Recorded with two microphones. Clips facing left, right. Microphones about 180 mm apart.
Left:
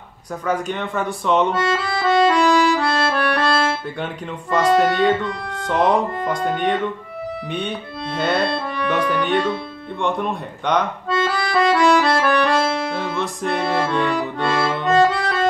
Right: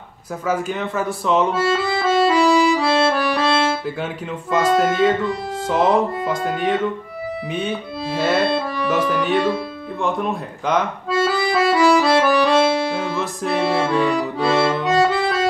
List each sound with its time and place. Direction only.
0.5 s speech: 5° right (ahead or behind)
7.5 s music: centre (ahead or behind)
10.0 s accordion: centre (ahead or behind)